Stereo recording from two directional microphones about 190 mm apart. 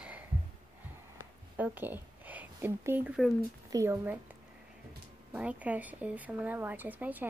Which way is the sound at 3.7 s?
15° right (ahead or behind).